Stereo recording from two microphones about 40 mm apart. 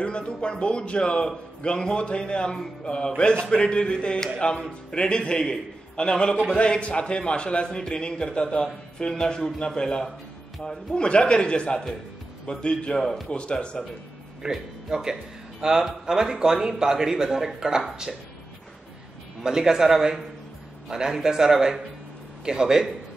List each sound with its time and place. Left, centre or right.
0.0 s a man's voice: left
2.5 s speech: centre
3.2 s a man's voice: left
14.5 s speech: centre
19.4 s speech: centre